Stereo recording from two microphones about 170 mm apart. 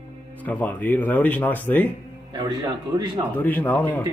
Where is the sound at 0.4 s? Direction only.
10° left (ahead or behind).